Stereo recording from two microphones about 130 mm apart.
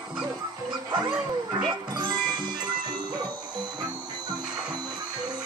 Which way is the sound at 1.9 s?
35° right (ahead or behind).